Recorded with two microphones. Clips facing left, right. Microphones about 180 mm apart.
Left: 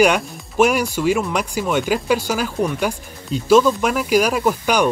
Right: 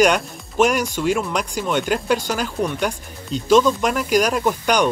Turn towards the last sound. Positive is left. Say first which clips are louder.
# left 1 dB
turn(degrees=5)  # may be behind; listen again after turning